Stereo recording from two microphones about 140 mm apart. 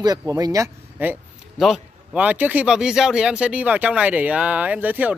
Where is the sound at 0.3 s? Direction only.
25° right (ahead or behind).